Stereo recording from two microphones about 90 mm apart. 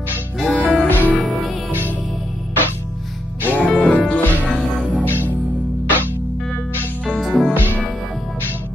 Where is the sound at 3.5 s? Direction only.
15° left (ahead or behind).